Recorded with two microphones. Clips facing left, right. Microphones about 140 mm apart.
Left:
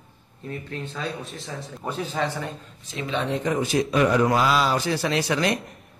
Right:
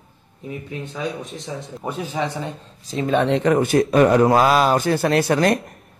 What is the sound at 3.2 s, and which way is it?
Speech, 75° right (ahead or behind).